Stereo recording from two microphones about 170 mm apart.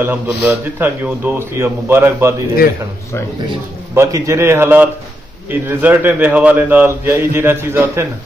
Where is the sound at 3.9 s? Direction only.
15° right (ahead or behind).